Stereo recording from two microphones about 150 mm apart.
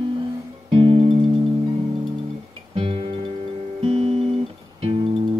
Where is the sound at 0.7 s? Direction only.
35° right (ahead or behind).